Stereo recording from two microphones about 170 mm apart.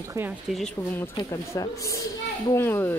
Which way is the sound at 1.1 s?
20° left (ahead or behind).